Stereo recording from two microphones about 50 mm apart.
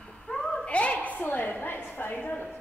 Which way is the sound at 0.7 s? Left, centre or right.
Left.